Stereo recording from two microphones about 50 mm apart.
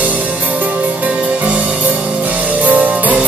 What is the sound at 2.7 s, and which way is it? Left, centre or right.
Music, right.